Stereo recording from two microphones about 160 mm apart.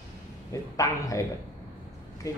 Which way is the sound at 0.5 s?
20° left (ahead or behind).